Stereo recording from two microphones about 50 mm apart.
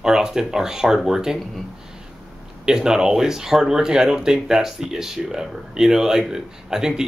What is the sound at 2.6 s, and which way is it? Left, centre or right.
Speech, centre.